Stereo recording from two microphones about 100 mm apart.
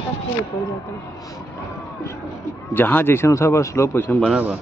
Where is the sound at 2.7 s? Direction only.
20° left (ahead or behind).